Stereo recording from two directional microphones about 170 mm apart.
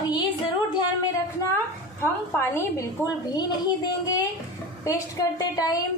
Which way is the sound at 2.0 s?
15° left (ahead or behind).